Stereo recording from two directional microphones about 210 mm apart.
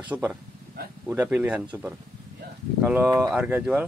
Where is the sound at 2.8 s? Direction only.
10° right (ahead or behind).